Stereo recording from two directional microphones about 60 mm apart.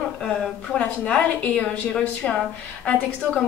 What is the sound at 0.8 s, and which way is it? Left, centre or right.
A woman's voice, left.